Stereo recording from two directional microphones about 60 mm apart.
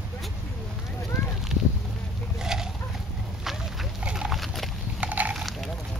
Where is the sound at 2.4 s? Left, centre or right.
Centre.